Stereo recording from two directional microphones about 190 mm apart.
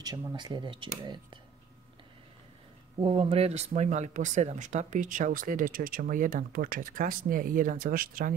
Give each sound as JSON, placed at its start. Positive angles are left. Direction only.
{"t": 0.0, "sound": "speech", "side_deg": -20}
{"t": 3.0, "sound": "speech", "side_deg": -30}